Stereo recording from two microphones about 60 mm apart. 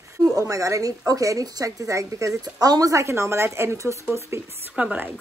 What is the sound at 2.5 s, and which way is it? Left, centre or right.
Speech, right.